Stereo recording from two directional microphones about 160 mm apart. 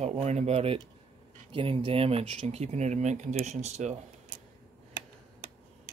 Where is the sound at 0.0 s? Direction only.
45° right (ahead or behind).